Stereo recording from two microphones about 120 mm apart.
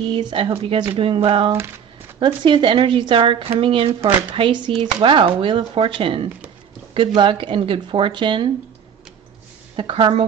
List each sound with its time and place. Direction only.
0.1 s speech: 45° right (ahead or behind)
9.8 s speech: 45° right (ahead or behind)